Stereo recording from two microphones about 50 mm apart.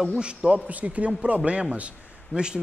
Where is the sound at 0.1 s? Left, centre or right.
Right.